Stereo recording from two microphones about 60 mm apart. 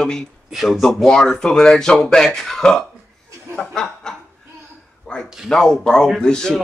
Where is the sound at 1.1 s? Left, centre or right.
Centre.